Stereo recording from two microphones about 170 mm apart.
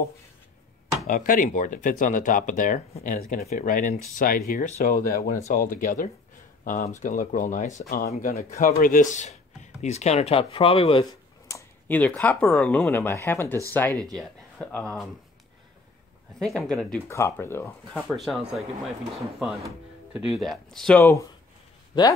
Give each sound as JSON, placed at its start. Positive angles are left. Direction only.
{"t": 1.0, "sound": "speech", "side_deg": 55}
{"t": 11.4, "sound": "speech", "side_deg": 15}
{"t": 16.3, "sound": "speech", "side_deg": 5}
{"t": 17.1, "sound": "speech", "side_deg": 15}
{"t": 18.0, "sound": "speech", "side_deg": 0}